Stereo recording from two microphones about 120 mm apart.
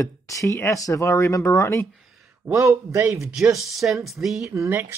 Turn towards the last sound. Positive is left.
turn(degrees=-25)  # may be behind; listen again after turning